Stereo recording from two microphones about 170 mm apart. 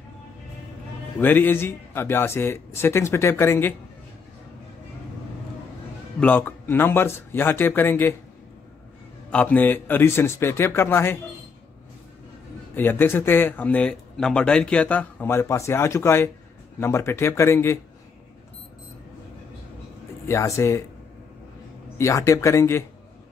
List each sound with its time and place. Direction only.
1.2 s speech: 10° left (ahead or behind)
6.1 s speech: 10° left (ahead or behind)
9.3 s speech: 10° left (ahead or behind)
12.7 s speech: 10° left (ahead or behind)
20.2 s speech: 15° left (ahead or behind)
21.9 s speech: 15° left (ahead or behind)